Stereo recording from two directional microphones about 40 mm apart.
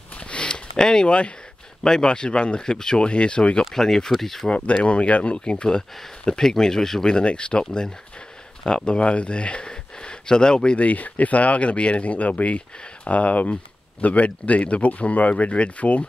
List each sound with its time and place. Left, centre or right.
0.3 s a sound: left
1.0 s speech: left
1.8 s speech: centre
3.7 s speech: centre
4.5 s speech: left
8.6 s speech: left
10.8 s speech: left